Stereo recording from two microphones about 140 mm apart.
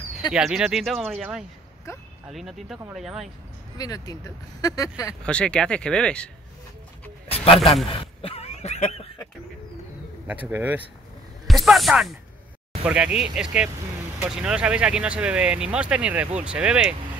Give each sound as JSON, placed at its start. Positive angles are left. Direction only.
{"t": 0.3, "sound": "speech", "side_deg": -5}
{"t": 1.9, "sound": "speech", "side_deg": 20}
{"t": 2.2, "sound": "speech", "side_deg": 0}
{"t": 3.7, "sound": "speech", "side_deg": 25}
{"t": 5.2, "sound": "speech", "side_deg": 5}
{"t": 7.2, "sound": "a sound", "side_deg": 40}
{"t": 10.2, "sound": "speech", "side_deg": -10}
{"t": 11.4, "sound": "speech", "side_deg": 0}